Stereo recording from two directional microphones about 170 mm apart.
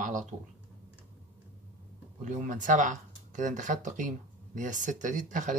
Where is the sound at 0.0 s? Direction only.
45° right (ahead or behind).